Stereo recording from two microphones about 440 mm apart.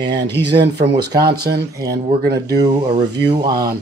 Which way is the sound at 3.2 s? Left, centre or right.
Centre.